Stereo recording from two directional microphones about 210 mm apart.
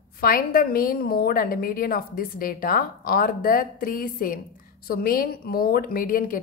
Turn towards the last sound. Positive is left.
turn(degrees=40)  # may be behind; listen again after turning